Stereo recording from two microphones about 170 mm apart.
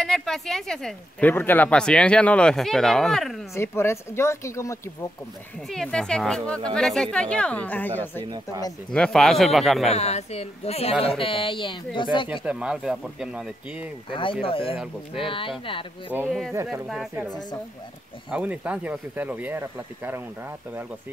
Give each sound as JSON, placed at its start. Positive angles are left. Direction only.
{"t": 0.0, "sound": "speech", "side_deg": 0}
{"t": 3.5, "sound": "speech", "side_deg": 15}
{"t": 5.7, "sound": "speech", "side_deg": 5}
{"t": 9.8, "sound": "speech", "side_deg": 40}
{"t": 12.3, "sound": "speech", "side_deg": -5}
{"t": 14.4, "sound": "speech", "side_deg": 35}
{"t": 16.3, "sound": "speech", "side_deg": 0}
{"t": 18.3, "sound": "speech", "side_deg": -10}